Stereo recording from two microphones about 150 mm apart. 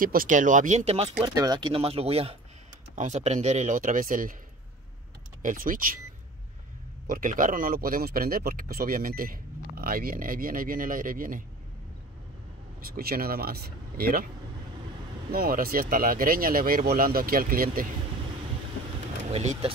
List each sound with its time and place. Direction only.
0.0 s speech: 70° right (ahead or behind); by 1.1 s 45° right (ahead or behind)
1.2 s speech: 25° right (ahead or behind); by 4.4 s 65° right (ahead or behind)
5.4 s speech: 65° right (ahead or behind)
7.1 s speech: 65° right (ahead or behind)
12.9 s speech: 80° right
15.3 s speech: 75° right (ahead or behind)
19.3 s speech: 45° right (ahead or behind)